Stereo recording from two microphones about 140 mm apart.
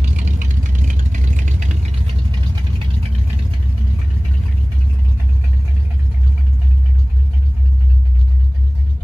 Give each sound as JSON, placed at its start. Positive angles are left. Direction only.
{"t": 0.0, "sound": "vehicle", "side_deg": -60}